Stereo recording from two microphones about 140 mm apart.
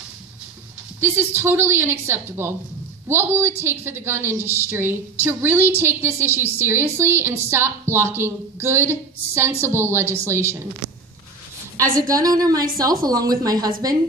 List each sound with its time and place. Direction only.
1.0 s a woman's voice: 15° right (ahead or behind)
12.1 s speech: 25° right (ahead or behind)